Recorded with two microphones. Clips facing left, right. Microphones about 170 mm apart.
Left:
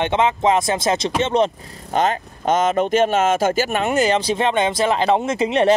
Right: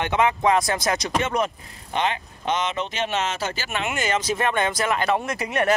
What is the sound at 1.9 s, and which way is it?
Speech, 45° left (ahead or behind).